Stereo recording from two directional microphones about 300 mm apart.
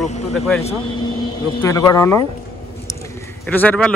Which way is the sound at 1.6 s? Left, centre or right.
Centre.